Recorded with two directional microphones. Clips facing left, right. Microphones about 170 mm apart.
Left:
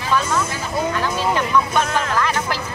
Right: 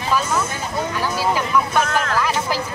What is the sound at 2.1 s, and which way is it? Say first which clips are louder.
Music: even; 10° right (ahead or behind).